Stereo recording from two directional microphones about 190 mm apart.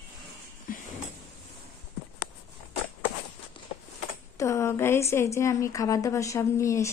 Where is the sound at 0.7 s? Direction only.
45° left (ahead or behind).